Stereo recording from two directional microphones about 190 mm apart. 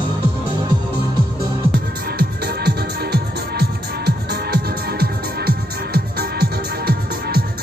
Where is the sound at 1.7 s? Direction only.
50° right (ahead or behind).